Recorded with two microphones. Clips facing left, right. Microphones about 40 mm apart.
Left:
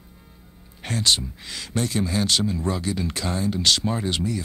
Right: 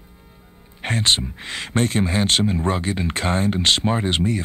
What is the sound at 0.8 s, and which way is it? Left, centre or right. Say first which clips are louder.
Speech: right 3 dB; right.